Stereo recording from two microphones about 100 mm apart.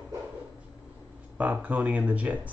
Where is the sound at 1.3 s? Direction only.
15° right (ahead or behind).